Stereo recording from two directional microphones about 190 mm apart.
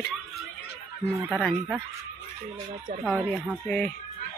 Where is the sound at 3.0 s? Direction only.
5° right (ahead or behind).